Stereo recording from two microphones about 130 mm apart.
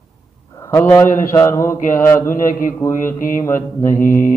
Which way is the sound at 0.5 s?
25° left (ahead or behind).